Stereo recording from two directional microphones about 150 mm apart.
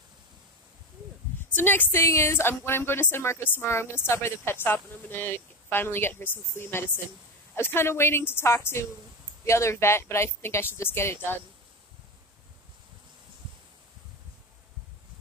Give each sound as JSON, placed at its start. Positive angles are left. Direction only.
{"t": 1.5, "sound": "speech", "side_deg": 10}